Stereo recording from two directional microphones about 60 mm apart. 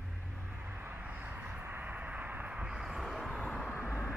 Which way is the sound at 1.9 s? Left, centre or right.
Right.